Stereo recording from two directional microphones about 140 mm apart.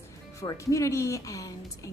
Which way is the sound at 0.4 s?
25° left (ahead or behind).